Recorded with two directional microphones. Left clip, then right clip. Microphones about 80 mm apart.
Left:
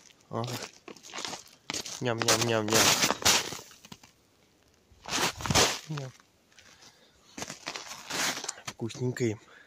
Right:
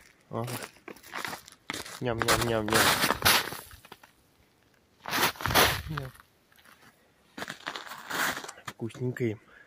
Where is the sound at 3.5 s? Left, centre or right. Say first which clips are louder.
Right 1 dB; right.